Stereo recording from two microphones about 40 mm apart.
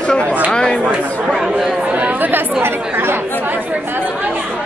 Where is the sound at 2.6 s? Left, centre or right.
Right.